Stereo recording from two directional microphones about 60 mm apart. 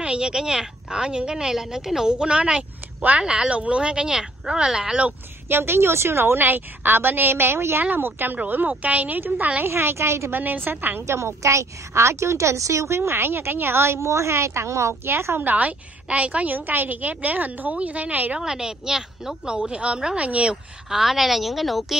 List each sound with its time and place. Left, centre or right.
0.0 s speech: centre
5.5 s a woman's voice: right
9.7 s a woman's voice: right
10.3 s a woman's voice: right
11.1 s a woman's voice: right
15.4 s a woman's voice: right
18.4 s a woman's voice: centre
20.9 s a woman's voice: centre